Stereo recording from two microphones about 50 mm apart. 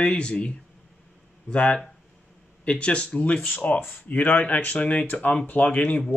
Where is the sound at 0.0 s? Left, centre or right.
Centre.